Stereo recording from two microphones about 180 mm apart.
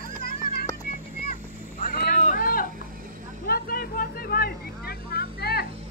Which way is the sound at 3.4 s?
55° left (ahead or behind).